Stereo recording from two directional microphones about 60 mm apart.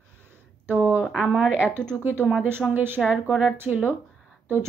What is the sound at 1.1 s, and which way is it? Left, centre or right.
Speech, centre.